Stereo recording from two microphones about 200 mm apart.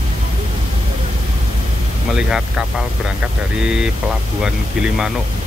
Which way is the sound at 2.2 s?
5° right (ahead or behind).